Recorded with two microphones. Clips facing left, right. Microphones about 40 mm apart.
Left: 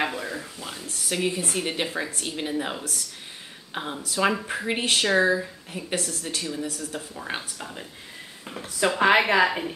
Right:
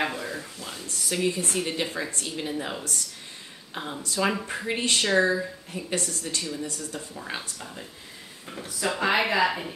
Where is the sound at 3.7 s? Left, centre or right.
Centre.